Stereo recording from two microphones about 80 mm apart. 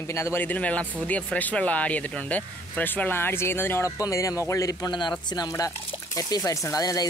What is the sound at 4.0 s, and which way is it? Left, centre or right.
Speech, left.